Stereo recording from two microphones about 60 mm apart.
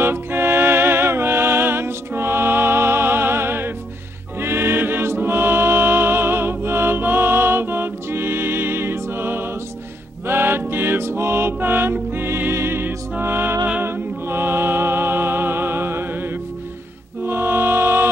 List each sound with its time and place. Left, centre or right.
0.0 s music: right